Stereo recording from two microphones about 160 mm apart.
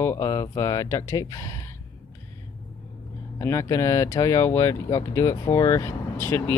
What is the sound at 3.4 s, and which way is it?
Speech, 20° left (ahead or behind).